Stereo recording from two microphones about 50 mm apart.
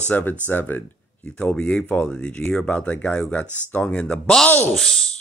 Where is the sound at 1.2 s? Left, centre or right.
Left.